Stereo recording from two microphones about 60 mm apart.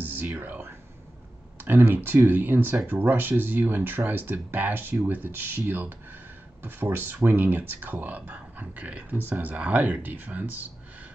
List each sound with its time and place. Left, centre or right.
0.0 s whispering: right
0.3 s speech: right